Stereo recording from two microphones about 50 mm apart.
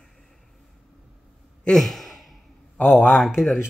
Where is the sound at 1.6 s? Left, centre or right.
Centre.